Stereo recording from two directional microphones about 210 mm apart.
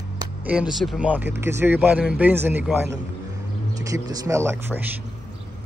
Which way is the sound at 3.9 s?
15° right (ahead or behind).